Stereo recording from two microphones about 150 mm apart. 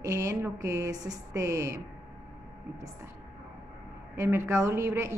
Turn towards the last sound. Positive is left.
turn(degrees=-20)  # may be behind; listen again after turning